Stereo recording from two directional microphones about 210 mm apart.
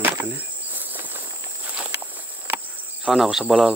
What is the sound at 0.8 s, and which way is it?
Walk, 10° right (ahead or behind).